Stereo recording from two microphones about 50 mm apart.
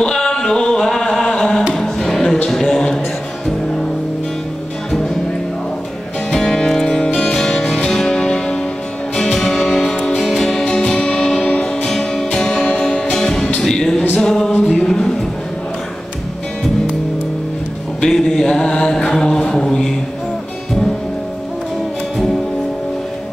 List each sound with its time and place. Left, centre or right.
0.0 s a sound: centre
1.7 s music: centre
2.4 s a sound: centre
6.3 s music: centre
10.6 s music: left
11.9 s music: centre
14.2 s a capella: centre
14.7 s music: centre
18.0 s mantra: centre